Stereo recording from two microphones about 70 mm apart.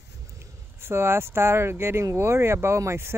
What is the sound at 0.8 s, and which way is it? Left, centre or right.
Speech, right.